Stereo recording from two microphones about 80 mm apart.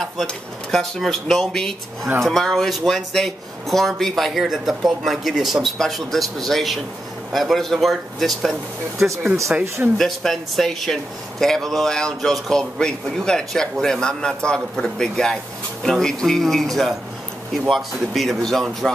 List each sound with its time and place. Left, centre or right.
0.0 s speech: centre
9.5 s speech: centre
9.9 s a man's voice: centre